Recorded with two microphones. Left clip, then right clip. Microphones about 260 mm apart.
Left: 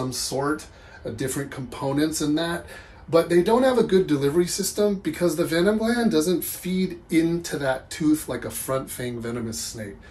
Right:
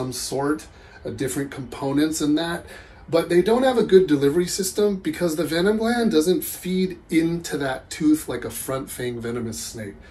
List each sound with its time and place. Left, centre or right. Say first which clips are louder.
0.1 s speech: right 3 dB; centre